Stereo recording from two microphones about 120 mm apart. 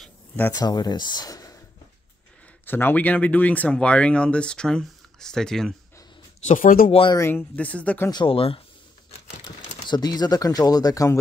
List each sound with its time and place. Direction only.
0.6 s speech: 35° left (ahead or behind)
2.6 s speech: 15° left (ahead or behind)
6.4 s speech: 85° left
7.2 s speech: 20° left (ahead or behind)
8.1 s speech: 45° left (ahead or behind)
9.8 s speech: 35° left (ahead or behind)